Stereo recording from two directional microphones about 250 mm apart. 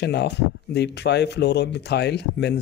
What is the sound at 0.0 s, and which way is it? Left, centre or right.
Speech, left.